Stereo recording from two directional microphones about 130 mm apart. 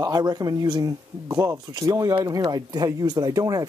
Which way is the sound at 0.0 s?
30° right (ahead or behind).